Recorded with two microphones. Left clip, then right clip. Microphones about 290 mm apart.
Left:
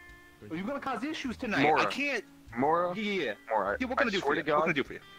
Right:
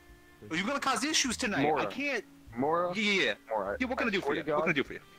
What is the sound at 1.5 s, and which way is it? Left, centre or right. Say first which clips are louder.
Speech: left 9 dB; centre.